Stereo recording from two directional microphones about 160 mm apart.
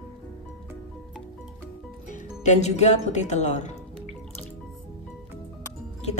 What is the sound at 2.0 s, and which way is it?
Speech, 50° left (ahead or behind).